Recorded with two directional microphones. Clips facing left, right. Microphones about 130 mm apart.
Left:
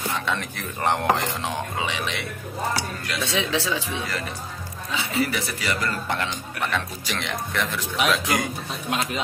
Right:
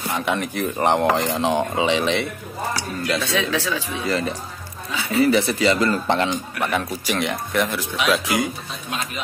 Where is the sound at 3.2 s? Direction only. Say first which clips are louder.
Right 2 dB; 25° left (ahead or behind).